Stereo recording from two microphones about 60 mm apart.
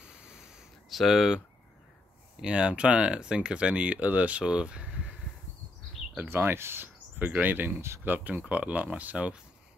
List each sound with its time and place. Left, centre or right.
0.0 s a sound: centre
2.3 s speech: centre
6.2 s speech: right; by 9.4 s centre